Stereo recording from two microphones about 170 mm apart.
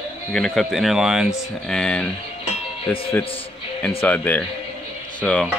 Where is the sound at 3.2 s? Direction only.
35° left (ahead or behind).